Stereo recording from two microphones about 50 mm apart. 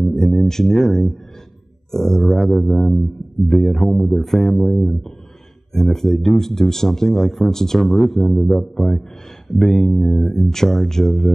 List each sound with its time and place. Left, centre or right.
0.0 s a man's voice: centre